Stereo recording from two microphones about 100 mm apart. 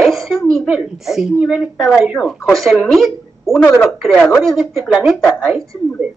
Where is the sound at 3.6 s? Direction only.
20° left (ahead or behind).